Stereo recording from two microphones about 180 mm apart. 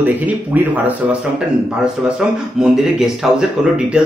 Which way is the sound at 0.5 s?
10° right (ahead or behind).